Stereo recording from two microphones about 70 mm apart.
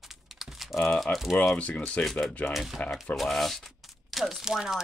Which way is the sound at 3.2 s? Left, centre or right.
Centre.